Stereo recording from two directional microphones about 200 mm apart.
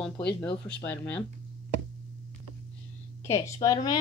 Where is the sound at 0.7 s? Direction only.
5° left (ahead or behind).